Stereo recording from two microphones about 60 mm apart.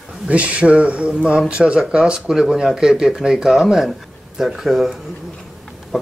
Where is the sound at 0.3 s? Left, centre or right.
Right; by 4.9 s centre.